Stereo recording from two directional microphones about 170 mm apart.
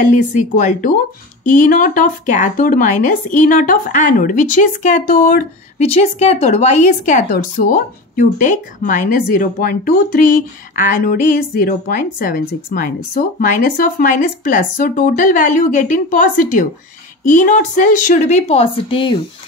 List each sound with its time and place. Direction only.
0.0 s speech: 45° left (ahead or behind)
5.8 s a woman's voice: 40° left (ahead or behind)
12.2 s speech: 55° left (ahead or behind); by 19.2 s 30° left (ahead or behind)